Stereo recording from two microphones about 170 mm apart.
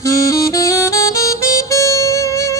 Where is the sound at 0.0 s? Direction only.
20° left (ahead or behind).